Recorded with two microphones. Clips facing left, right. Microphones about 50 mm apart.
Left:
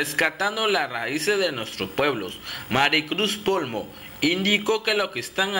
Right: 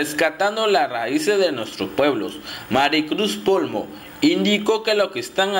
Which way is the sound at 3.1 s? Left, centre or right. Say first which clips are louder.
Right 5 dB; left.